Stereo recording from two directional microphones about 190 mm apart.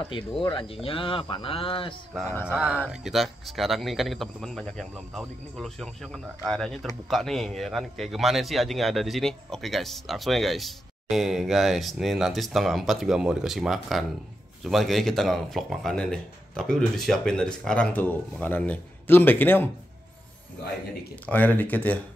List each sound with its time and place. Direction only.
0.4 s speech: 25° left (ahead or behind)
2.4 s a man's voice: 5° right (ahead or behind); by 19.7 s 10° left (ahead or behind)
21.3 s speech: 10° left (ahead or behind)